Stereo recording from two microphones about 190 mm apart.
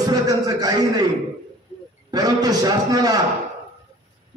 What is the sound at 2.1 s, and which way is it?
A man's voice, 20° right (ahead or behind).